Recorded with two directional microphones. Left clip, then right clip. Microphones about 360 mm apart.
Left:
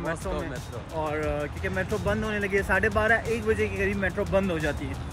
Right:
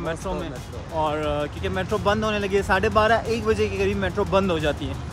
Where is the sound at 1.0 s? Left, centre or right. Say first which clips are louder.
Right 5 dB; centre.